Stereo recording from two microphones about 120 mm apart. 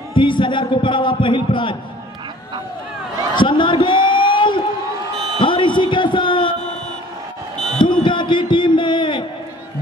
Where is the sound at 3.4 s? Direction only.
40° left (ahead or behind).